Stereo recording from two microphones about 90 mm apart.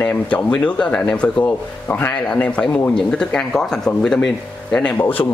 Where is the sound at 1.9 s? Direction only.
25° left (ahead or behind); by 4.2 s 5° left (ahead or behind).